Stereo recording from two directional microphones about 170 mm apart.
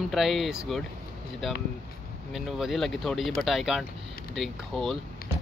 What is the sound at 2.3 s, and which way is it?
Speech, centre (ahead or behind).